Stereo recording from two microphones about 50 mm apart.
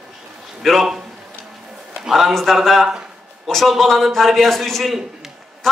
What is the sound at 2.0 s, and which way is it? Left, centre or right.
Speech, centre.